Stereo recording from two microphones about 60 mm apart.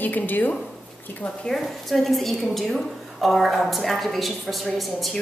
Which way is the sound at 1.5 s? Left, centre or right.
Centre.